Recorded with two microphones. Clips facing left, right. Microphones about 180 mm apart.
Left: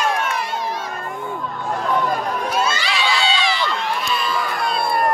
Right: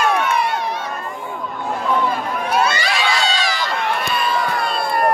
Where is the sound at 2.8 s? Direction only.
45° right (ahead or behind).